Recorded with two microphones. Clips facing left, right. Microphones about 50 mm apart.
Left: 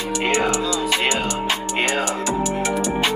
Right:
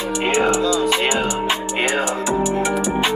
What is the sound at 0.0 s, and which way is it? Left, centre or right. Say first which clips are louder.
Music: right 2 dB; centre.